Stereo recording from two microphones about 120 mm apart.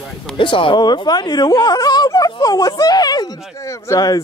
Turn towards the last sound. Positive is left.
turn(degrees=30)  # may be behind; listen again after turning